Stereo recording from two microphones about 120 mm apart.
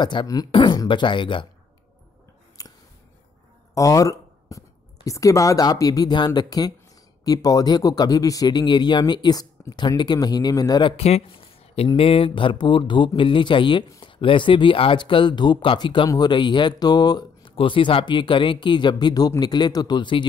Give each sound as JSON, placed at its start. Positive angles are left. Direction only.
{"t": 0.0, "sound": "speech", "side_deg": 40}
{"t": 2.6, "sound": "a sound", "side_deg": 30}
{"t": 3.7, "sound": "speech", "side_deg": 30}
{"t": 10.8, "sound": "speech", "side_deg": 45}
{"t": 11.1, "sound": "a sound", "side_deg": 55}
{"t": 12.0, "sound": "speech", "side_deg": 50}